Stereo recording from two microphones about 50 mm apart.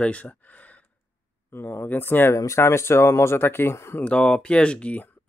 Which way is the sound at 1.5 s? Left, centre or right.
Left.